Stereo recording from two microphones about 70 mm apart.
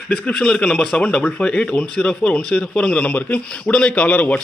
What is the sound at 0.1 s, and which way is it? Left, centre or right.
A man's voice, centre.